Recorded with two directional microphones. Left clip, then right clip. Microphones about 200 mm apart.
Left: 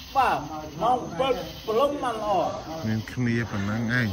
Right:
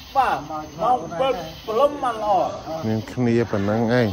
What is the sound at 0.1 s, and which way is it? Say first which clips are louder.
Speech: right 3 dB; centre (ahead or behind).